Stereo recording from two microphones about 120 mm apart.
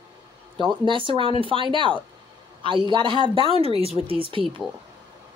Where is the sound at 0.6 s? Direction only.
45° right (ahead or behind).